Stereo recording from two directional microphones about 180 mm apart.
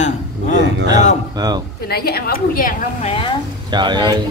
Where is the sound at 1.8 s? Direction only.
60° left (ahead or behind).